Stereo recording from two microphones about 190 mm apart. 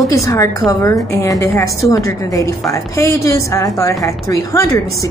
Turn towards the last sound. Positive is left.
turn(degrees=15)  # may be behind; listen again after turning